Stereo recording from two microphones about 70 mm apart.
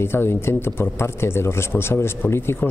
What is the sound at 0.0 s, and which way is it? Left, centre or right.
Speech, left.